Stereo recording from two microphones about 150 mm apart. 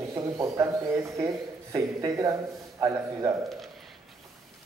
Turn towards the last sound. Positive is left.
turn(degrees=-25)  # may be behind; listen again after turning